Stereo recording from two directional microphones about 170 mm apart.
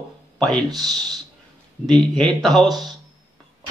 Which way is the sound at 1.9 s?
Centre (ahead or behind).